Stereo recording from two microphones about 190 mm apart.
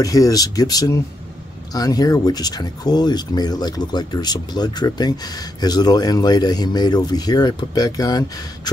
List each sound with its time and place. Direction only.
0.0 s speech: 20° left (ahead or behind)